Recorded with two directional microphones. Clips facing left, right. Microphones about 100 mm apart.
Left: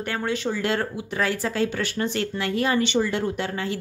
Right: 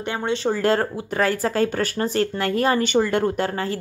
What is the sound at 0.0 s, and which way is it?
Speech, 20° right (ahead or behind).